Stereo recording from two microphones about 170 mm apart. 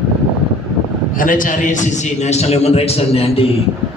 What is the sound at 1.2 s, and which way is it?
A man's voice, 50° left (ahead or behind).